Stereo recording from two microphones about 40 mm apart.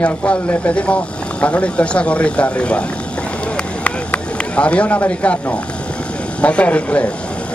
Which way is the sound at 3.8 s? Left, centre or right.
Left.